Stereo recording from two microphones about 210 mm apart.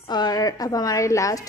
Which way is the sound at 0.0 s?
20° left (ahead or behind).